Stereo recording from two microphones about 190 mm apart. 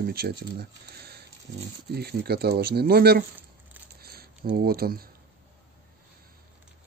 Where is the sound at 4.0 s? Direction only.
55° right (ahead or behind).